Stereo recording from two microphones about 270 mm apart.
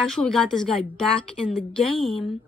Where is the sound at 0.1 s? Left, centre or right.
Centre.